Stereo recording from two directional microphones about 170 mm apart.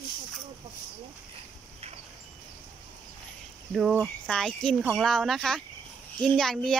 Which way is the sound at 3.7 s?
5° right (ahead or behind).